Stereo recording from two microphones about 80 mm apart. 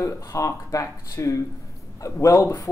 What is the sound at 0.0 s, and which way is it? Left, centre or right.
Speech, left.